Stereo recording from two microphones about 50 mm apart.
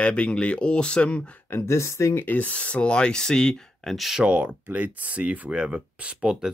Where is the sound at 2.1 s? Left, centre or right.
Left.